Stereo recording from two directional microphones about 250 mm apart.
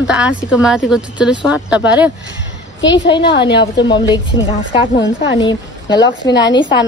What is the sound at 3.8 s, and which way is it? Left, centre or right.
Speech, centre.